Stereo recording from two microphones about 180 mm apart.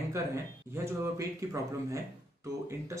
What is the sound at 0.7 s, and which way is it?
Speech, 15° right (ahead or behind).